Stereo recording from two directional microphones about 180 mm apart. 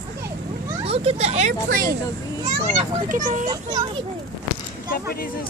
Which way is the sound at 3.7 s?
25° right (ahead or behind).